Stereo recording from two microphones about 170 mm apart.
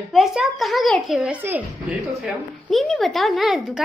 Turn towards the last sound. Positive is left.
turn(degrees=0)  # may be behind; listen again after turning